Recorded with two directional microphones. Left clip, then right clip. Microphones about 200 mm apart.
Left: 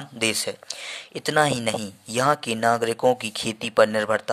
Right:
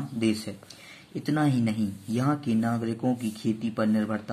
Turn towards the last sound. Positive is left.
turn(degrees=40)  # may be behind; listen again after turning